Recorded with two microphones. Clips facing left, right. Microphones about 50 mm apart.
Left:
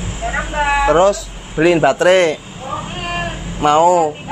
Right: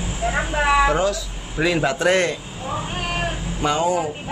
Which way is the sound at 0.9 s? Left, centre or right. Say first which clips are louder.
Left 8 dB; left.